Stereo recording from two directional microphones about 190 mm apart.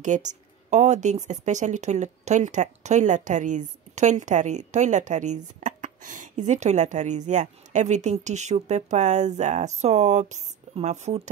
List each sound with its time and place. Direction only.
0.0 s speech: 40° right (ahead or behind)